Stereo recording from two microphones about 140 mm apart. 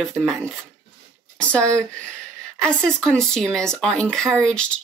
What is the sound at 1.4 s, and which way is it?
Speech, 10° left (ahead or behind).